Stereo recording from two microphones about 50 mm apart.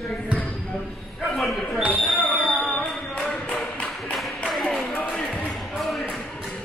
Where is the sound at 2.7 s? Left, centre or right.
Centre.